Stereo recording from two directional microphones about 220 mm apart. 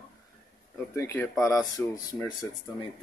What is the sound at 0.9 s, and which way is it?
Speech, 10° left (ahead or behind).